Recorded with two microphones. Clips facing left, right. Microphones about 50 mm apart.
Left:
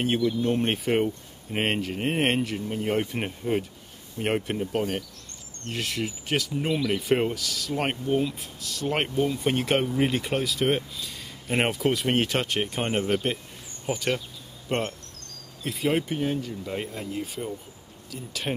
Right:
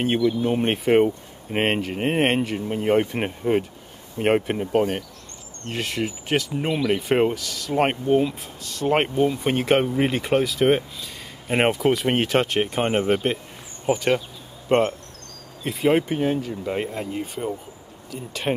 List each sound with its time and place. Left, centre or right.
0.0 s speech: centre
6.5 s speech: right
7.3 s speech: centre
7.7 s speech: centre
8.6 s speech: centre
11.8 s speech: centre; by 15.0 s right
15.6 s speech: centre
15.9 s speech: centre